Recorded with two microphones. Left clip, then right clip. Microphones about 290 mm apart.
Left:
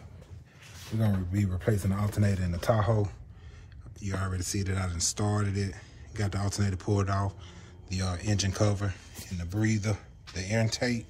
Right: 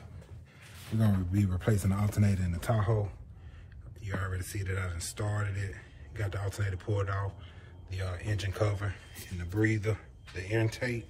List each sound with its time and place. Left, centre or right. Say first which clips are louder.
0.9 s speech: even; centre; by 3.0 s left
4.0 s speech: left 3 dB; centre